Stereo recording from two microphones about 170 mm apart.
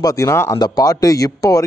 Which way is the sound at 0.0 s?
20° left (ahead or behind).